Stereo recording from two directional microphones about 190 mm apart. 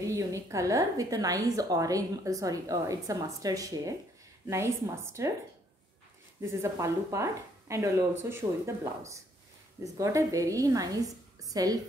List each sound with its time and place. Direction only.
0.0 s a woman's voice: 15° right (ahead or behind)
6.6 s a woman's voice: 15° right (ahead or behind)